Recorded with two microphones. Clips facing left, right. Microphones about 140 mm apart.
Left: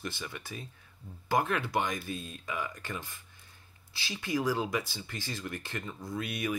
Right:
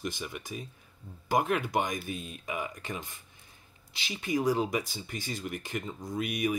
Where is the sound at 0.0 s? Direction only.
15° right (ahead or behind).